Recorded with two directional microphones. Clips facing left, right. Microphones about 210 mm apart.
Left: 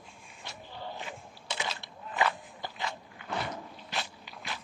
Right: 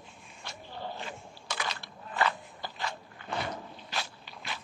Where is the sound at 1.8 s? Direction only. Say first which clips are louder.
Even; 15° left (ahead or behind).